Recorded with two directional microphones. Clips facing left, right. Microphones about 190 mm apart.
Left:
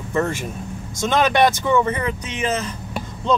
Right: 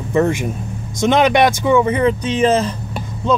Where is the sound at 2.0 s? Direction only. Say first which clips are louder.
Right 10 dB; 30° right (ahead or behind).